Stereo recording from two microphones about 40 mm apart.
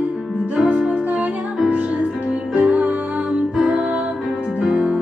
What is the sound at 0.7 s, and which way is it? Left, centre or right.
Music, right.